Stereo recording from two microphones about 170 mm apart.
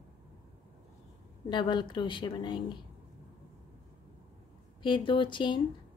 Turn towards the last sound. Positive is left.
turn(degrees=25)  # may be behind; listen again after turning